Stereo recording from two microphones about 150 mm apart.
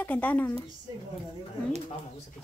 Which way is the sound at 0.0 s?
10° left (ahead or behind).